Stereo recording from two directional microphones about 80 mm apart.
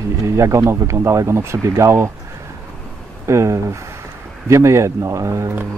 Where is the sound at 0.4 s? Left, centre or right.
Right.